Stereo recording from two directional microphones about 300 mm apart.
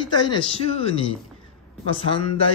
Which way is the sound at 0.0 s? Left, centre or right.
Centre.